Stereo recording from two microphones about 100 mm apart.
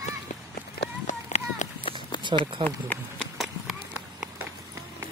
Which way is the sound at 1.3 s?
90° left.